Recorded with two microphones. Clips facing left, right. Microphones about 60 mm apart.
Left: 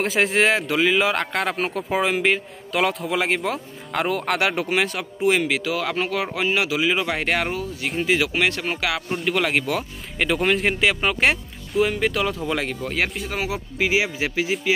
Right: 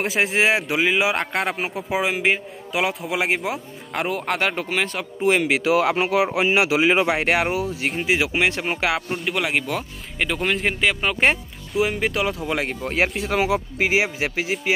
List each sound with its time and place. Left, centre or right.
0.0 s a man's voice: centre
5.5 s a man's voice: right
9.1 s a man's voice: centre
12.4 s speech: centre
13.5 s speech: right